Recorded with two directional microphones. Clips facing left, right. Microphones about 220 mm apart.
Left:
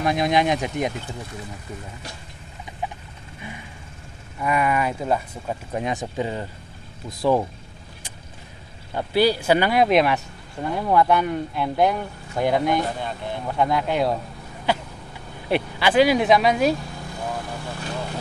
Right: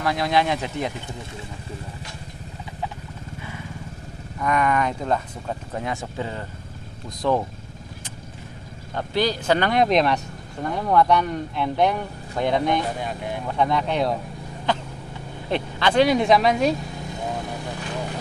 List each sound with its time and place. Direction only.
0.0 s speech: 20° left (ahead or behind)
4.4 s speech: 10° left (ahead or behind)
8.9 s speech: 10° left (ahead or behind)
13.0 s speech: 10° right (ahead or behind)
13.5 s speech: 5° left (ahead or behind)
17.1 s vehicle: 20° right (ahead or behind)